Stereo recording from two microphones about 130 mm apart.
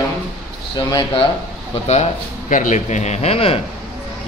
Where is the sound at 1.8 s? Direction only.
55° left (ahead or behind).